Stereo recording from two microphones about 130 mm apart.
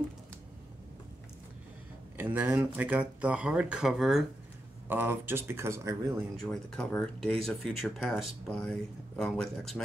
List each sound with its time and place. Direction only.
2.1 s speech: 15° right (ahead or behind)
4.8 s speech: 15° right (ahead or behind)
6.3 s speech: 5° left (ahead or behind)